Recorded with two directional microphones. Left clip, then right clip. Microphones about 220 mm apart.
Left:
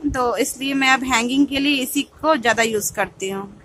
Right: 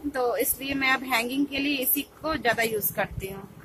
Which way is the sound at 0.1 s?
25° left (ahead or behind).